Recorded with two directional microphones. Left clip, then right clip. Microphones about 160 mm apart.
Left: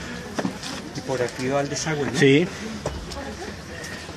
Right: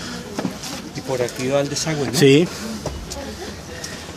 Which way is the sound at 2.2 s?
30° right (ahead or behind).